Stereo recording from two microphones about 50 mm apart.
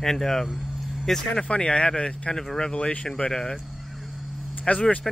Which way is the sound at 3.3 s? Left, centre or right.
Centre.